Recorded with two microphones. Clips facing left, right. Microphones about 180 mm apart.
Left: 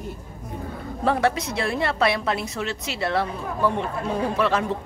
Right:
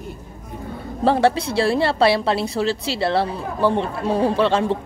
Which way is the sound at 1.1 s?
30° right (ahead or behind).